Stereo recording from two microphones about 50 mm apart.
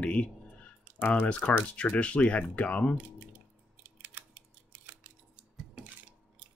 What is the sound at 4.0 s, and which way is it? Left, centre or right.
Scissors, right.